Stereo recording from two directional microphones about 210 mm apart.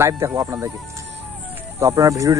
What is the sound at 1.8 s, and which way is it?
Speech, 15° right (ahead or behind).